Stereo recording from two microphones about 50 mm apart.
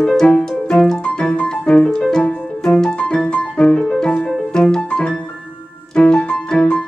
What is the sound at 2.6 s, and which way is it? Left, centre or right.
Music, centre.